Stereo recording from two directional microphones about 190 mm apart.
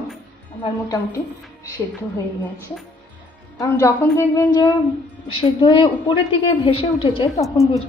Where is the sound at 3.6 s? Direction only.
15° left (ahead or behind); by 7.3 s 30° left (ahead or behind).